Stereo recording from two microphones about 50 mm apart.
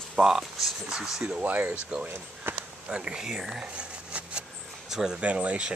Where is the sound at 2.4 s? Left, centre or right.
Right.